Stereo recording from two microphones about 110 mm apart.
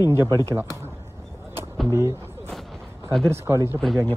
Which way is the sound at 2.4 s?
5° left (ahead or behind).